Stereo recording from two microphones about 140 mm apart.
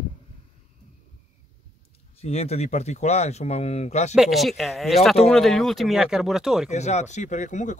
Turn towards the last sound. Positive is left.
turn(degrees=60)  # may be behind; listen again after turning